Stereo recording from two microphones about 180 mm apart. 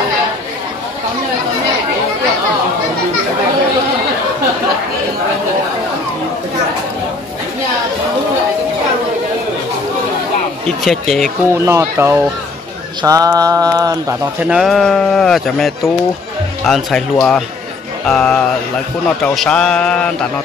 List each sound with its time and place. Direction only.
10.8 s speech: centre (ahead or behind)
11.5 s speech: 15° right (ahead or behind)
13.0 s mantra: 20° right (ahead or behind)
14.4 s speech: 5° right (ahead or behind)